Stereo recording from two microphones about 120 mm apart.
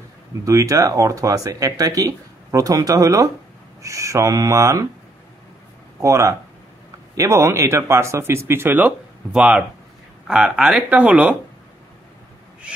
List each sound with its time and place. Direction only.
0.5 s speech: 25° right (ahead or behind)
5.9 s speech: 25° right (ahead or behind); by 11.3 s 10° right (ahead or behind)